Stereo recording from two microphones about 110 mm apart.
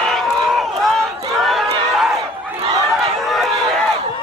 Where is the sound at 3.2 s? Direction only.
Centre (ahead or behind).